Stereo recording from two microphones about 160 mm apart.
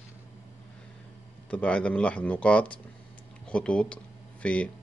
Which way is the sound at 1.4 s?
5° left (ahead or behind).